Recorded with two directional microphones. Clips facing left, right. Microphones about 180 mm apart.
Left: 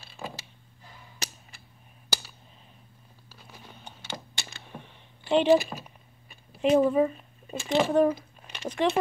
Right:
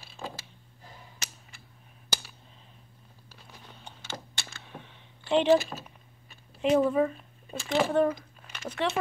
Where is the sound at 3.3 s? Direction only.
5° left (ahead or behind).